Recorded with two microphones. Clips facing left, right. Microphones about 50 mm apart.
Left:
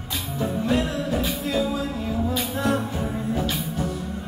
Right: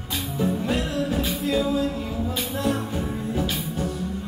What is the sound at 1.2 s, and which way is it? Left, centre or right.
Music, centre.